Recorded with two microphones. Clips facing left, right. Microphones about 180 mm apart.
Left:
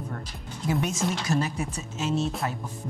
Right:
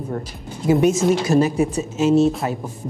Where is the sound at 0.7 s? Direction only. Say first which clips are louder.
Right 12 dB; 15° right (ahead or behind).